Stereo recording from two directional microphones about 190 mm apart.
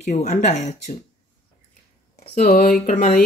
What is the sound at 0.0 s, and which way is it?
Speech, 40° left (ahead or behind).